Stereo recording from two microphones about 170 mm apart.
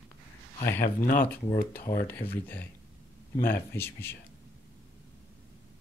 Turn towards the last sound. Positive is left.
turn(degrees=15)  # may be behind; listen again after turning